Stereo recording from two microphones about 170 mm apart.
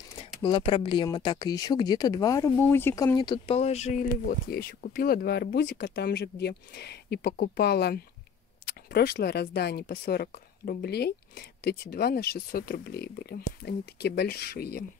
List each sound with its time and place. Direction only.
0.2 s speech: 30° left (ahead or behind); by 3.2 s 15° left (ahead or behind)
3.2 s speech: 30° left (ahead or behind)
4.3 s speech: 60° left (ahead or behind)